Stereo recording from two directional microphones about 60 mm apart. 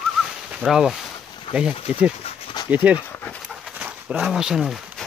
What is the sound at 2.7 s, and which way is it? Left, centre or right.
Speech, right.